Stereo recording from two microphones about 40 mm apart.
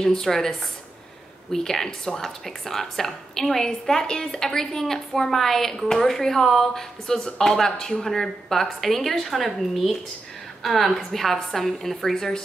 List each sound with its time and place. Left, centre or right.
0.0 s a woman's voice: centre